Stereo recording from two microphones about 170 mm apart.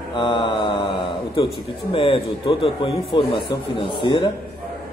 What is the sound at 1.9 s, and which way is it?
A man's voice, 30° left (ahead or behind).